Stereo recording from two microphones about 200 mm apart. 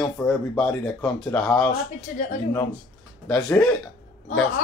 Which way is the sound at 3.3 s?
10° left (ahead or behind).